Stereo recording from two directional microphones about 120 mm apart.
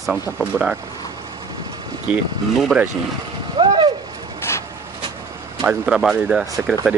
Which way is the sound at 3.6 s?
40° right (ahead or behind).